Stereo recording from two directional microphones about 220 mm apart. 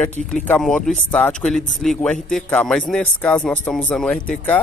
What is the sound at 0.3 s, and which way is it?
Speech, 5° left (ahead or behind).